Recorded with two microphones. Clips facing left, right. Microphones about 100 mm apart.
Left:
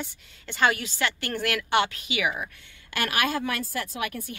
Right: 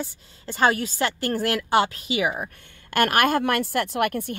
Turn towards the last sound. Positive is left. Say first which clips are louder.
# right 8 dB
turn(degrees=-60)  # may be behind; listen again after turning